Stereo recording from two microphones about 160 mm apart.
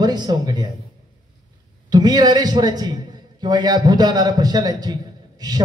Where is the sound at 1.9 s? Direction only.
25° right (ahead or behind).